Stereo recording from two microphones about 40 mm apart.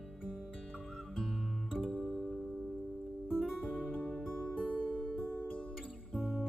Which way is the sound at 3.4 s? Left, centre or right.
Centre.